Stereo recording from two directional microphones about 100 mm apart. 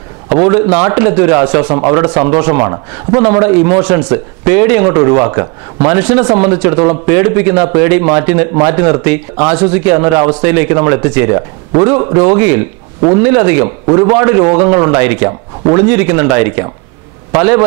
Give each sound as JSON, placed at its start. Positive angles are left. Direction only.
{"t": 0.4, "sound": "a man's voice", "side_deg": -20}